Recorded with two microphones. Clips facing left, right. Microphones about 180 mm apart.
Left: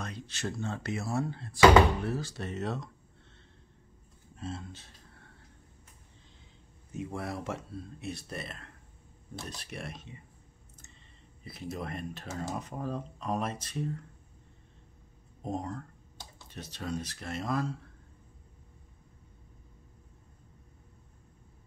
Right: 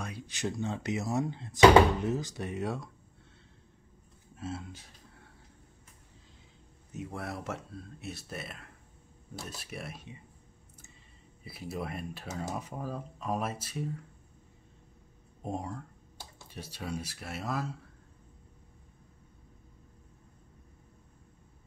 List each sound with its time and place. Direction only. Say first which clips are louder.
0.0 s speech: right 1 dB; 15° right (ahead or behind)
4.4 s speech: right 1 dB; 5° right (ahead or behind)
6.9 s speech: left 2 dB; centre (ahead or behind)
11.4 s speech: even; 5° right (ahead or behind)
15.4 s speech: left 1 dB; 10° right (ahead or behind)